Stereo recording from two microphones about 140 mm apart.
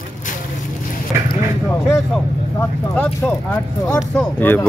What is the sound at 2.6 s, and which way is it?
Speech, 15° left (ahead or behind).